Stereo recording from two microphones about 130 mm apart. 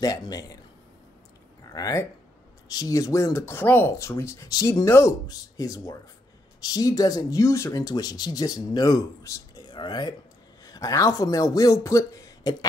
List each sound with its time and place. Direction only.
0.0 s speech: 30° left (ahead or behind)
1.7 s speech: 25° left (ahead or behind)